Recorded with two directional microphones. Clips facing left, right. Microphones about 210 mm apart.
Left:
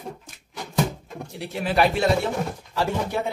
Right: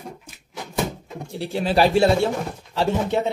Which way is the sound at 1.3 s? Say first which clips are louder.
Right 4 dB; 30° right (ahead or behind).